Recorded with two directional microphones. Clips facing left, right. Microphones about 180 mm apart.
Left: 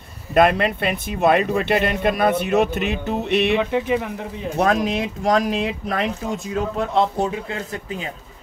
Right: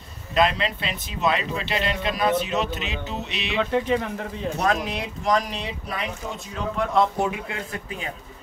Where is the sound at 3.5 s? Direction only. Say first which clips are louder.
Left 2 dB; 10° left (ahead or behind).